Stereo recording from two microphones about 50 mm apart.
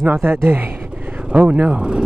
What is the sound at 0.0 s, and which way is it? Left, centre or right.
Speech, right.